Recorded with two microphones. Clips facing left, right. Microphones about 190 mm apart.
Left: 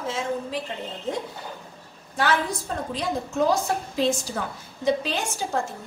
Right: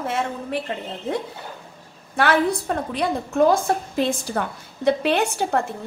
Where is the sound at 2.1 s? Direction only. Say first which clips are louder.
Right 5 dB; 60° right (ahead or behind).